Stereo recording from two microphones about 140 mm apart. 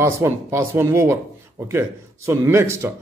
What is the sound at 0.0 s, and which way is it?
Speech, 20° right (ahead or behind).